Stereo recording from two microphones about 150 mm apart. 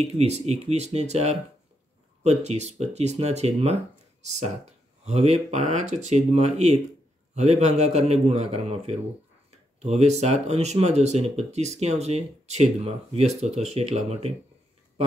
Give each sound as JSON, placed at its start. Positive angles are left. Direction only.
{"t": 0.0, "sound": "speech", "side_deg": -45}